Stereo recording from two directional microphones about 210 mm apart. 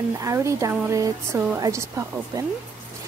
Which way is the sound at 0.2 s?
15° right (ahead or behind).